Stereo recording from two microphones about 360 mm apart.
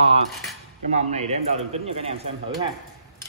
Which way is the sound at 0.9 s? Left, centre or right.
Centre.